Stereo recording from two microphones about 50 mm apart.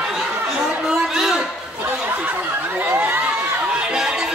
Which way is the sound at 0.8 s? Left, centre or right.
Centre.